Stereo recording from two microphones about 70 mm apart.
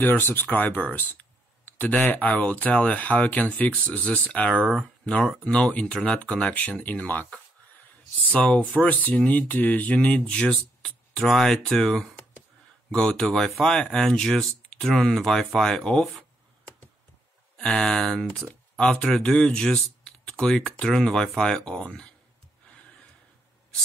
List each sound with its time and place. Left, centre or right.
0.0 s speech: left
4.6 s speech: centre
5.0 s speech: centre
13.6 s speech: centre
17.6 s speech: centre
18.5 s speech: centre